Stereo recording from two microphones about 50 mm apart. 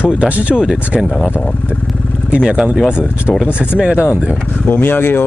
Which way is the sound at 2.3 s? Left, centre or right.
Right.